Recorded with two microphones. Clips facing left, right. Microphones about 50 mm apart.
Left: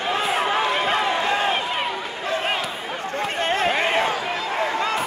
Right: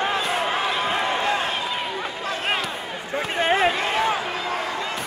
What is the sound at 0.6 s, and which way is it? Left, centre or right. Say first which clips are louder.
Run: left 2 dB; left.